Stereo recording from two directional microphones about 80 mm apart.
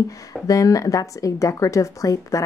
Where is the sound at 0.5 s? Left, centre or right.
Left.